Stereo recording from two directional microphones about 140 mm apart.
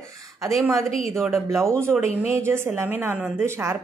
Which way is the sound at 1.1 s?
Centre (ahead or behind).